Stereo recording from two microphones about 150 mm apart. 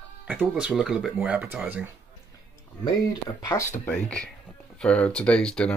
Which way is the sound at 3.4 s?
20° left (ahead or behind).